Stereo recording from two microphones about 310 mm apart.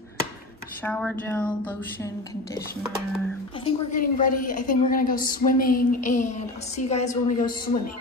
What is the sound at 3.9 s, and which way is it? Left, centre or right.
A woman's voice, left.